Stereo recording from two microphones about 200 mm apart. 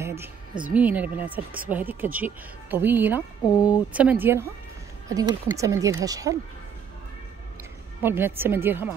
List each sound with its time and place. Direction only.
0.0 s music: 15° right (ahead or behind)
0.7 s speech: 5° right (ahead or behind)
3.2 s speech: 20° left (ahead or behind)
3.9 s speech: 5° right (ahead or behind)
8.0 s speech: 10° right (ahead or behind)